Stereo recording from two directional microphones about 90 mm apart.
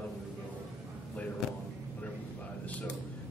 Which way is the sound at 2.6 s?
15° left (ahead or behind).